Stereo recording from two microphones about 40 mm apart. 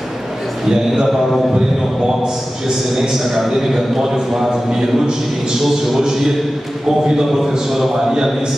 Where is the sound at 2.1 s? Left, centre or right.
Centre.